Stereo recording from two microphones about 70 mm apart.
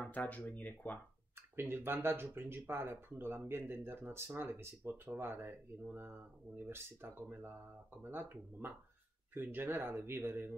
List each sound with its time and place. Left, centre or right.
0.0 s speech: left
1.6 s speech: right